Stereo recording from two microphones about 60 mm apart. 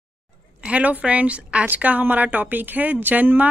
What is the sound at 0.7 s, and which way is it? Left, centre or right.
A woman's voice, right.